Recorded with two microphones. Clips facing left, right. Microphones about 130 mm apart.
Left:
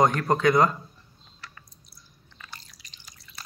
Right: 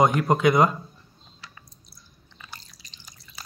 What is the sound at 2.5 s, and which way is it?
Drip, 30° right (ahead or behind).